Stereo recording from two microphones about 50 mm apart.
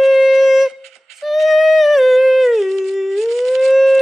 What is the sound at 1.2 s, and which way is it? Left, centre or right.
Humming, centre.